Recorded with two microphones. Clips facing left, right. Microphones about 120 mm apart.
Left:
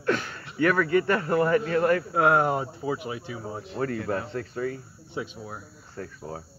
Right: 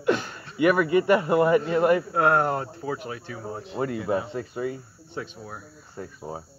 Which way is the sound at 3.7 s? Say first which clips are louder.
Right 2 dB; 10° right (ahead or behind).